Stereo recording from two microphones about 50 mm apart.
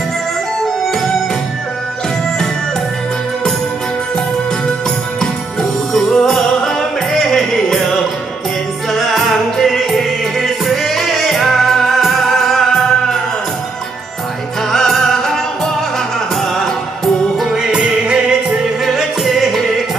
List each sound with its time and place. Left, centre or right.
5.2 s music: centre
8.9 s music: centre
14.7 s music: centre
17.4 s music: centre
18.9 s music: centre